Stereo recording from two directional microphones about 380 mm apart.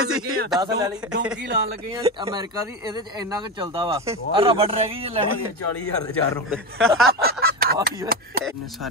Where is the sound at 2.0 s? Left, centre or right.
Centre.